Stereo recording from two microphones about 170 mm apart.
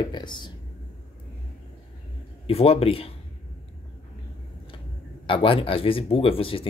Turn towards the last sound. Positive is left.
turn(degrees=30)  # may be behind; listen again after turning